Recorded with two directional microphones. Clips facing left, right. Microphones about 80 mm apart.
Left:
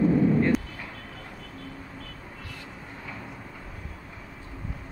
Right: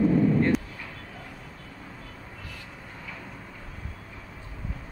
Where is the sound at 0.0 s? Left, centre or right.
Centre.